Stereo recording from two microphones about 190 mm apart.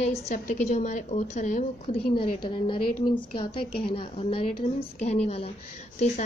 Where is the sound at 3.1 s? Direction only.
25° left (ahead or behind).